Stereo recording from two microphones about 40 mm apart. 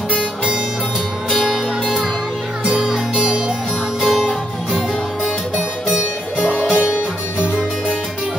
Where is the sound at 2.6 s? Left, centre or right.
Right.